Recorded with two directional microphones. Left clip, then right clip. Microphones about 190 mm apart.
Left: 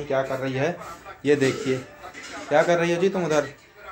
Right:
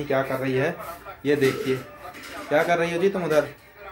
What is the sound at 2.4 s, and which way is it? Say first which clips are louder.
Speech: left 2 dB; 25° left (ahead or behind).